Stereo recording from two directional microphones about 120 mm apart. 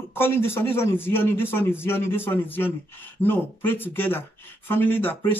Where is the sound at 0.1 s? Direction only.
20° left (ahead or behind).